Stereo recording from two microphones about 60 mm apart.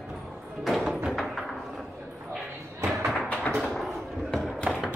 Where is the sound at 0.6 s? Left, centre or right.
Centre.